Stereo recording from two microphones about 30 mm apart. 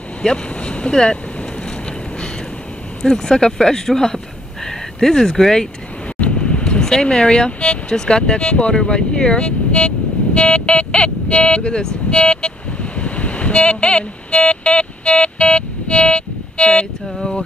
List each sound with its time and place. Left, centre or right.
0.2 s speech: left
3.0 s speech: centre
6.3 s vehicle: left
6.8 s speech: left
7.9 s speech: left
12.9 s vehicle: left
13.5 s speech: left